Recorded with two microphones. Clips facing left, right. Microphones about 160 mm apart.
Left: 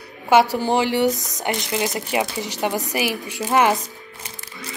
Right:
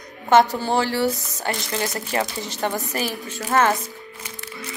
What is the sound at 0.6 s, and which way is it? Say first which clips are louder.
Speech: left 2 dB; 15° left (ahead or behind).